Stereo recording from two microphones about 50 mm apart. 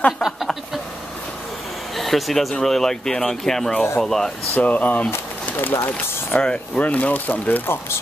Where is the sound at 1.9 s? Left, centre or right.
Centre.